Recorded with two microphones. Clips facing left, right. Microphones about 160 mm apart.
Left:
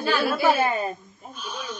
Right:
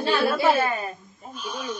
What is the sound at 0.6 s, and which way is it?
Speech, 20° left (ahead or behind).